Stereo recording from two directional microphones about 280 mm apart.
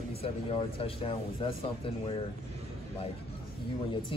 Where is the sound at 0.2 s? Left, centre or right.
Centre.